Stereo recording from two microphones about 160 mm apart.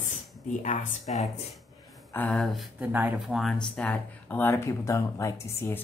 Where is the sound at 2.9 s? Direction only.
10° right (ahead or behind).